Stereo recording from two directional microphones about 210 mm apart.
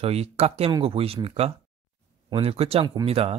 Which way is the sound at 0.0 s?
30° right (ahead or behind).